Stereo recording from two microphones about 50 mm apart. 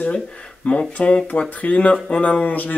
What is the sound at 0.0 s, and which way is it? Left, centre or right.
Speech, left.